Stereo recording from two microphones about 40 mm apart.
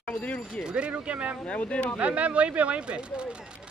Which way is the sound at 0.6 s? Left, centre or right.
Right.